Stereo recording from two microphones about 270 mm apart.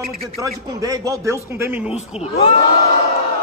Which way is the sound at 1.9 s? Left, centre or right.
Left.